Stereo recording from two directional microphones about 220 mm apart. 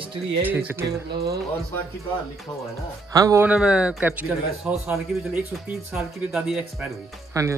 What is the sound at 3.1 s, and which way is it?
Speech, 15° right (ahead or behind).